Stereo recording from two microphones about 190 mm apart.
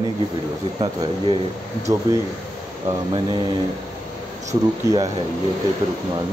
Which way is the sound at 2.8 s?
25° right (ahead or behind).